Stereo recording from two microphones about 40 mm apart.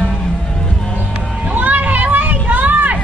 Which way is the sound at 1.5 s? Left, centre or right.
Right.